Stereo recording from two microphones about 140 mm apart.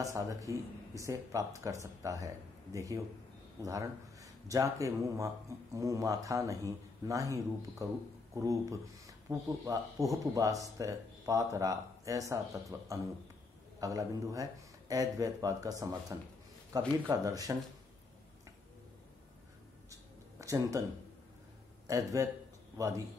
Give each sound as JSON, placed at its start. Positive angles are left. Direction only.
{"t": 0.0, "sound": "speech", "side_deg": -25}
{"t": 19.9, "sound": "a sound", "side_deg": -25}
{"t": 21.8, "sound": "speech", "side_deg": -25}